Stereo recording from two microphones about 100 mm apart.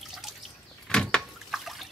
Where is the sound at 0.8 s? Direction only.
5° left (ahead or behind).